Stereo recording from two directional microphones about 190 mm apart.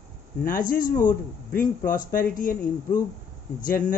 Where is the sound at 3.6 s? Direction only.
45° left (ahead or behind).